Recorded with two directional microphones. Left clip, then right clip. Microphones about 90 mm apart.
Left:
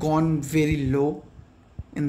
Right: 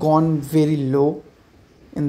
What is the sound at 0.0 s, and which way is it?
Speech, 5° right (ahead or behind).